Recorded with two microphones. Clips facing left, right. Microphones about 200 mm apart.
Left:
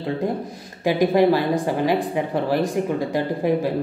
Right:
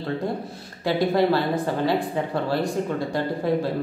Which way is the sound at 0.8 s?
15° left (ahead or behind).